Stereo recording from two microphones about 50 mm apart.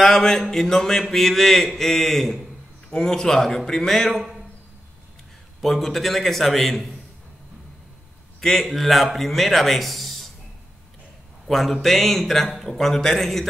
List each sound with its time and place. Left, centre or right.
0.0 s speech: centre
2.9 s speech: centre
4.2 s a sound: centre
5.6 s speech: centre
8.4 s speech: centre
11.4 s speech: centre